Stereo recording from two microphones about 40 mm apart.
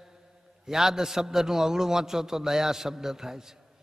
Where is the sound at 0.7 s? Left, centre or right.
Centre.